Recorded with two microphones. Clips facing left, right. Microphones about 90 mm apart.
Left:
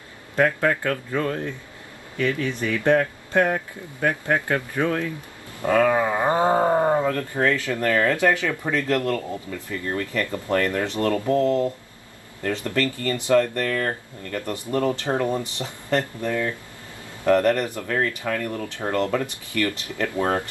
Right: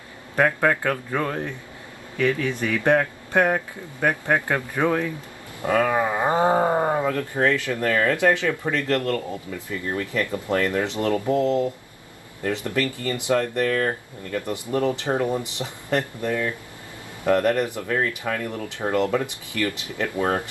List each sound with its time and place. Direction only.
0.4 s speech: 15° right (ahead or behind)
8.7 s speech: 15° left (ahead or behind)
9.7 s speech: 15° right (ahead or behind)
17.8 s speech: 5° right (ahead or behind)
18.7 s speech: 15° right (ahead or behind)